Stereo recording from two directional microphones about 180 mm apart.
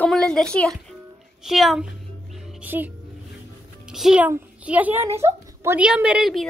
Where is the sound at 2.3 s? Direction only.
5° right (ahead or behind).